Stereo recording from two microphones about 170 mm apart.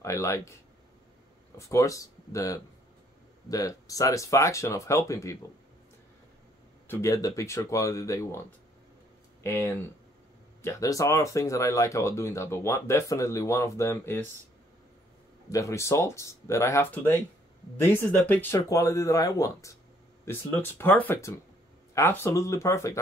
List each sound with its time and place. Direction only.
0.0 s speech: 15° left (ahead or behind)
1.6 s speech: 15° left (ahead or behind)
6.9 s speech: 20° left (ahead or behind)
9.4 s speech: 15° left (ahead or behind)
15.5 s speech: 20° left (ahead or behind)